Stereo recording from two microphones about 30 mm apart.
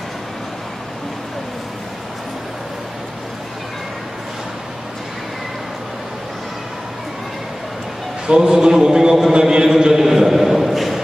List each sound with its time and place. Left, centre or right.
8.3 s a man's voice: right; by 11.0 s centre